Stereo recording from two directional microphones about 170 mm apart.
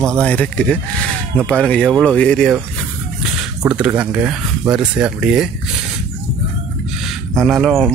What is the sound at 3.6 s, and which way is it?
Speech, 10° right (ahead or behind).